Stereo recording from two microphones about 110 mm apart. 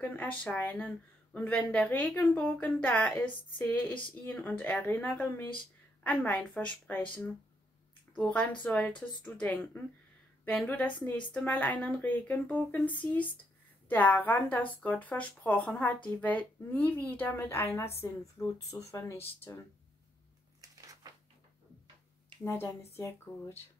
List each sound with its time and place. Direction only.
0.0 s speech: 10° left (ahead or behind)
8.2 s speech: 10° left (ahead or behind)
11.1 s speech: 15° left (ahead or behind)
20.6 s a sound: 30° right (ahead or behind)
22.4 s speech: 25° left (ahead or behind)